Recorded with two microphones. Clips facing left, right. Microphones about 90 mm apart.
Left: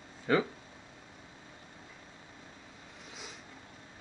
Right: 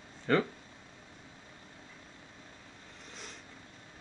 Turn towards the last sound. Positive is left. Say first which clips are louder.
# left 1 dB
turn(degrees=5)  # may be behind; listen again after turning